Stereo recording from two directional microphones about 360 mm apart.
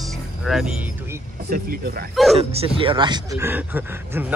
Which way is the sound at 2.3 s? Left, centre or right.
Centre.